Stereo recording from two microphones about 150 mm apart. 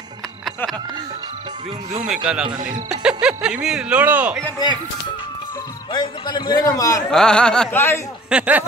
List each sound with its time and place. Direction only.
2.0 s speech: 5° right (ahead or behind)
5.9 s a man's voice: 30° left (ahead or behind)
7.1 s speech: 5° left (ahead or behind)
8.3 s speech: 10° right (ahead or behind)